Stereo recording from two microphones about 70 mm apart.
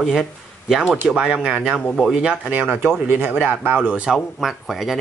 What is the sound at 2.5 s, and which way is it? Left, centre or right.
Speech, right.